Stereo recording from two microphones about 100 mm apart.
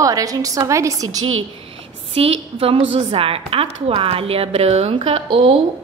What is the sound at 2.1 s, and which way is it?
A woman's voice, 75° right (ahead or behind).